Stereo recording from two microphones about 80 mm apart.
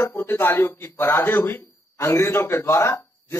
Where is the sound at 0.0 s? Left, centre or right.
Left.